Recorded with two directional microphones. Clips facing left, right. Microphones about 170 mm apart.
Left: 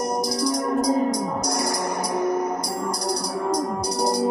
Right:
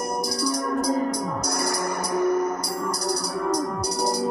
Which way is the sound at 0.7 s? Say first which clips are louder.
Left 3 dB; 15° left (ahead or behind).